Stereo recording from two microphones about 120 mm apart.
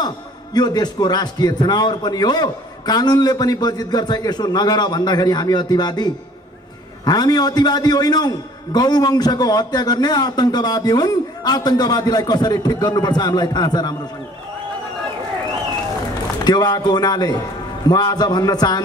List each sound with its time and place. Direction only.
0.6 s a man's voice: 35° left (ahead or behind)
7.1 s a man's voice: 35° left (ahead or behind)
16.4 s a man's voice: 35° left (ahead or behind)